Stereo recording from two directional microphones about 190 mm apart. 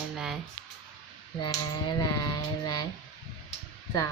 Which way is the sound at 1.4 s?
25° left (ahead or behind).